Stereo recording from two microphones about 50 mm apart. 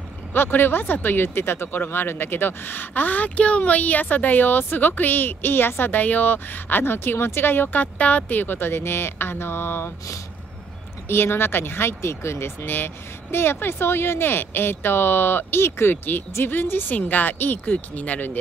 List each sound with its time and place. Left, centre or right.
0.3 s a woman's voice: left
11.1 s speech: left
16.9 s a woman's voice: left